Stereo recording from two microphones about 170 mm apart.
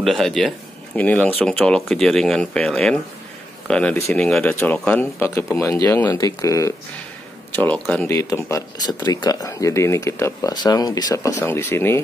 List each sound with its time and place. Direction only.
0.0 s speech: centre (ahead or behind)